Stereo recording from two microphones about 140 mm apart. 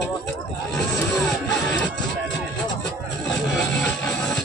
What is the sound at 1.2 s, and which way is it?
Music, 5° left (ahead or behind).